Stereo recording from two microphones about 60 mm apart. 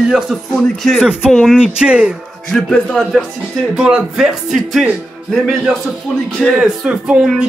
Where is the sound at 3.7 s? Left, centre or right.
Centre.